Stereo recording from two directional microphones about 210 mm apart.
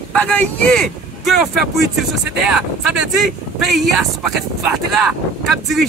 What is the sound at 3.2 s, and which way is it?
Speech, centre (ahead or behind).